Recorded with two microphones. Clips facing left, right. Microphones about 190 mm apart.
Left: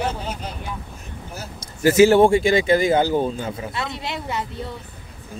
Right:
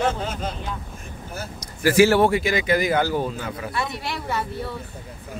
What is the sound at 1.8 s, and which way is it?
A man's voice, 20° left (ahead or behind).